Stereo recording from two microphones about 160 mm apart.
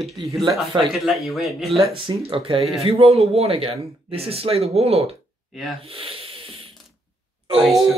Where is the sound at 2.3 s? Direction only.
35° right (ahead or behind).